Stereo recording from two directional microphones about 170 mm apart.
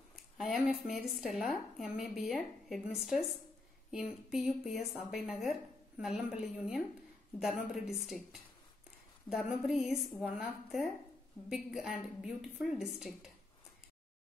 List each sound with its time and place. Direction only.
0.4 s a woman's voice: centre (ahead or behind)